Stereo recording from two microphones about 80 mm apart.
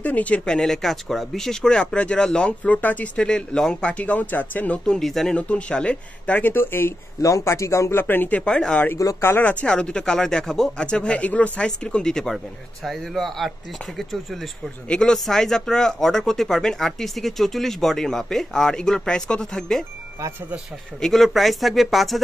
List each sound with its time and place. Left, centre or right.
0.0 s speech: centre
0.5 s speech: centre; by 4.7 s left
4.8 s speech: centre; by 6.9 s left
7.2 s speech: left
8.5 s speech: centre
8.9 s speech: left
9.7 s speech: centre
21.0 s speech: centre